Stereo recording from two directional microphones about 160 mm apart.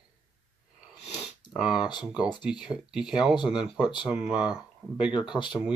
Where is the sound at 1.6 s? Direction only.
5° right (ahead or behind).